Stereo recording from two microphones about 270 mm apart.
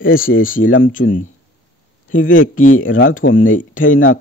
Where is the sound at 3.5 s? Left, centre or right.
Left.